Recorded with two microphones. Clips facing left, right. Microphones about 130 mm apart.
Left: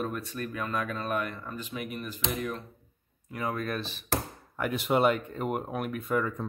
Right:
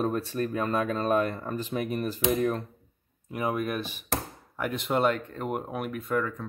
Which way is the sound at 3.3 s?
20° right (ahead or behind).